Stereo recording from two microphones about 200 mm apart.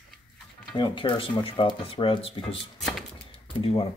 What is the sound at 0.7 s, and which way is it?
Speech, 25° left (ahead or behind).